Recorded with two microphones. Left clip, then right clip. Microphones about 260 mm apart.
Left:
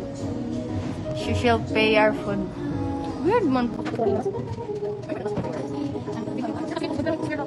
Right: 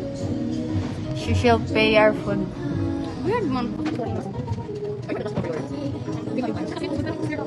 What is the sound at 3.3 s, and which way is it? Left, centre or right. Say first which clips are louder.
Music: left 3 dB; left.